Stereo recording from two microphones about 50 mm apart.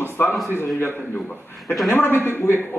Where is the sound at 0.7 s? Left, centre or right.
Left.